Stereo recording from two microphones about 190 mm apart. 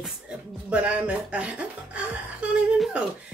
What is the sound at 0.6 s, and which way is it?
Speech, 5° right (ahead or behind).